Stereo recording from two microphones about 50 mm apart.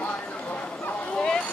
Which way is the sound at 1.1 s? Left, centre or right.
Centre.